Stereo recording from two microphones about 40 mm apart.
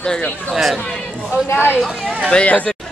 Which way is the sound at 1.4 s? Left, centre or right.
Left.